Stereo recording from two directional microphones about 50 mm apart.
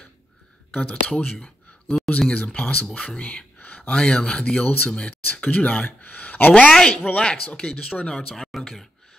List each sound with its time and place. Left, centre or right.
0.7 s speech: left
6.7 s speech: centre
7.1 s speech: left
8.4 s speech: centre